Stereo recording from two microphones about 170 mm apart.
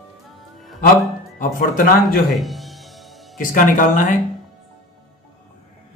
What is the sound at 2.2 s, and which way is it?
Music, centre (ahead or behind).